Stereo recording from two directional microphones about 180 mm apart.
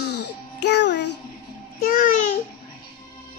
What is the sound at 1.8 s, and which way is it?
Speech, 50° left (ahead or behind).